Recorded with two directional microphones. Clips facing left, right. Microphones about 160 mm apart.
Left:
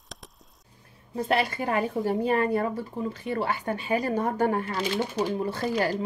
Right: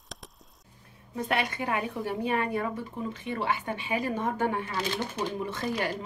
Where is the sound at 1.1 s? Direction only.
30° left (ahead or behind).